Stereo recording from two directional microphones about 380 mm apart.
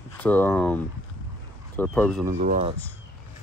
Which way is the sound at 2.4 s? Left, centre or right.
Centre.